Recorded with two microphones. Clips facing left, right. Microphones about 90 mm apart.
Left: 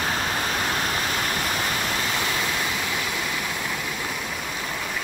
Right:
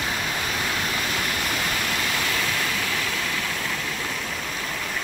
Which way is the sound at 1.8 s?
25° left (ahead or behind).